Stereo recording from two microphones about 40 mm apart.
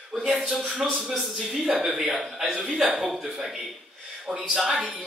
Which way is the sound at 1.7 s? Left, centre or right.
Centre.